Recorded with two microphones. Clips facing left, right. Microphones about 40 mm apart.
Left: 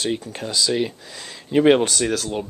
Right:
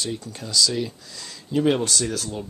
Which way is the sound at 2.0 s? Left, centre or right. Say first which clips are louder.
Left 5 dB; left.